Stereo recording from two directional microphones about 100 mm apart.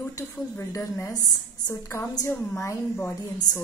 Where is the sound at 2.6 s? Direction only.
20° left (ahead or behind).